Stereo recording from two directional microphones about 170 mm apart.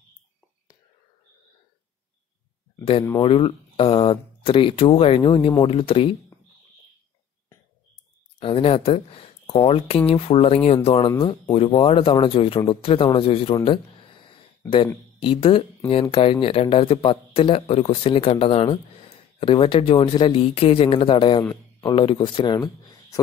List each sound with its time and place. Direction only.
2.8 s speech: 35° left (ahead or behind)
8.4 s speech: 35° left (ahead or behind)
11.1 s speech: 25° left (ahead or behind)
11.5 s speech: 35° left (ahead or behind)
13.7 s a sound: 30° left (ahead or behind)
15.1 s speech: 30° left (ahead or behind)